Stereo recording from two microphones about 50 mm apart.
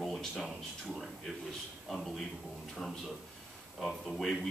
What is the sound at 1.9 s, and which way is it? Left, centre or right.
Speech, centre.